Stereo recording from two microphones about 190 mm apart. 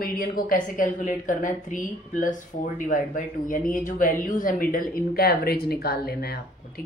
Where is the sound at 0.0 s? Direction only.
50° left (ahead or behind).